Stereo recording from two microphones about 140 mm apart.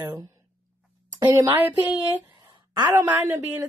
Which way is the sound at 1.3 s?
15° right (ahead or behind).